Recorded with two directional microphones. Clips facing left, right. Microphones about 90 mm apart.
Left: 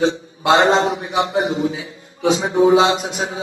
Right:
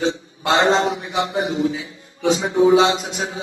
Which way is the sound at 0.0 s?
30° left (ahead or behind).